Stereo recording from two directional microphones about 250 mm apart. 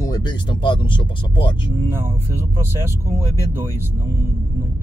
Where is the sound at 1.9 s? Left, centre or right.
Centre.